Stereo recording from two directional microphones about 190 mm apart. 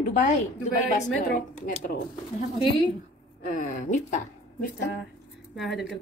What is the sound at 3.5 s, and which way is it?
Speech, 40° left (ahead or behind).